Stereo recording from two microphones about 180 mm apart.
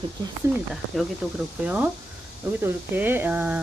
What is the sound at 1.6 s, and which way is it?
Speech, 10° right (ahead or behind).